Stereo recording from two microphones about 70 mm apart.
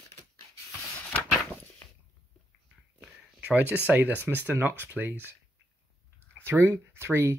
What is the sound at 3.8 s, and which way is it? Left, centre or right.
Speech, right.